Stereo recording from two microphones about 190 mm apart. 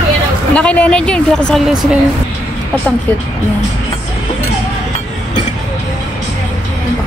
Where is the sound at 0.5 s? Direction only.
5° left (ahead or behind).